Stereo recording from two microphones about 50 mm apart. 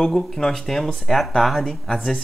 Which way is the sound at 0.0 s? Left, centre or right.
Centre.